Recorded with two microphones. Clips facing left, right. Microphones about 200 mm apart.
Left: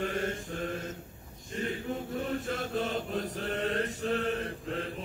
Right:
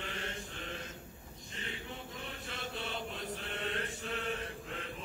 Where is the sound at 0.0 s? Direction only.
45° left (ahead or behind).